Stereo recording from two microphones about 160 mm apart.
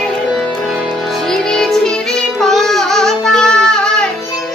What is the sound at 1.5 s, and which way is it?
Music, 5° left (ahead or behind).